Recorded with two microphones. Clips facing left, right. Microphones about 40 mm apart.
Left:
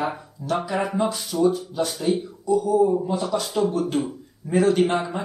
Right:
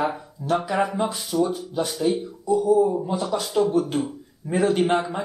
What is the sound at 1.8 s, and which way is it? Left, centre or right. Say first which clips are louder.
Speech: right 2 dB; centre.